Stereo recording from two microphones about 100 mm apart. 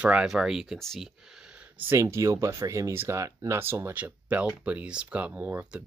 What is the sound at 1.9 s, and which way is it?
Speech, 30° right (ahead or behind).